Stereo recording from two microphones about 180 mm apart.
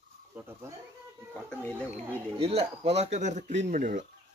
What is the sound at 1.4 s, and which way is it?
Speech, 5° left (ahead or behind).